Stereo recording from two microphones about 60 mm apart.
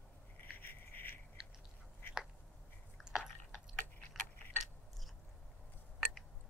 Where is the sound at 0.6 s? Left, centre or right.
Left.